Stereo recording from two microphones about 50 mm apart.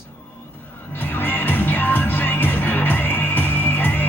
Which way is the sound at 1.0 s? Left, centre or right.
Left.